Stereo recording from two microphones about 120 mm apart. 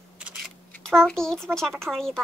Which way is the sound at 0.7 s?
5° left (ahead or behind).